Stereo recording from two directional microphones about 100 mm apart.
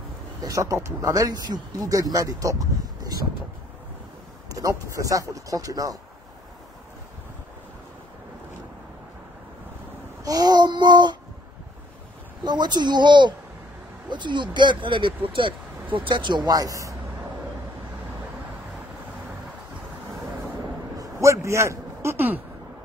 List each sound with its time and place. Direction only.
0.4 s speech: 35° right (ahead or behind)
4.6 s speech: 35° right (ahead or behind)
10.2 s speech: 40° right (ahead or behind)
12.4 s speech: 45° right (ahead or behind)
21.0 s a sound: 30° right (ahead or behind)